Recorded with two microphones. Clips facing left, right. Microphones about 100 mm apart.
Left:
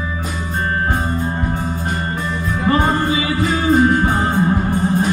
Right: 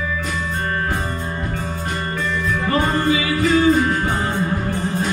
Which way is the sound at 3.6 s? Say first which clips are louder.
Left 5 dB; 40° left (ahead or behind).